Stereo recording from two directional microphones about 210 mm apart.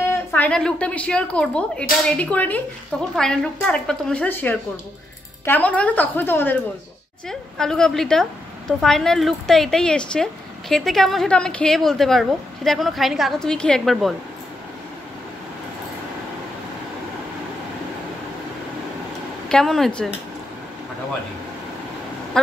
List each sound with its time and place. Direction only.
0.3 s a woman's voice: 5° left (ahead or behind)
19.5 s a woman's voice: centre (ahead or behind)